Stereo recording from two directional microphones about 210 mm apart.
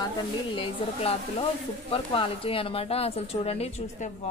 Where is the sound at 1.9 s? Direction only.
25° left (ahead or behind).